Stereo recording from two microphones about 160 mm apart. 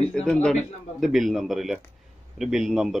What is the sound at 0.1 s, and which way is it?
Speech, 5° left (ahead or behind).